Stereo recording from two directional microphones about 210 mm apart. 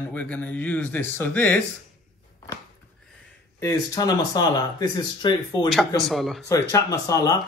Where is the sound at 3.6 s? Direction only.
15° left (ahead or behind).